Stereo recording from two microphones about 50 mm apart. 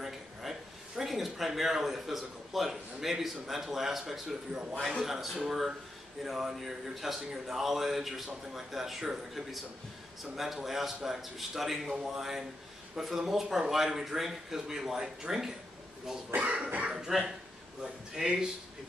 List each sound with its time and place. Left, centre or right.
0.0 s a man's voice: centre
16.3 s speech: right
16.9 s a man's voice: centre